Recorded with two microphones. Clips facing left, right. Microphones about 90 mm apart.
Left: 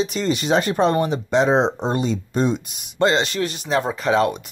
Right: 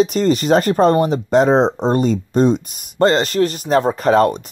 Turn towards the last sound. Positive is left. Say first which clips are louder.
# right 5 dB
turn(degrees=-45)  # may be behind; listen again after turning